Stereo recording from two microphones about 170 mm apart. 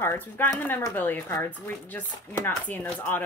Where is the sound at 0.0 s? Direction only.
15° left (ahead or behind).